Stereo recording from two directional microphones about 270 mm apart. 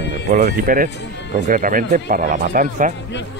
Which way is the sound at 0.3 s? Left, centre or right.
Right.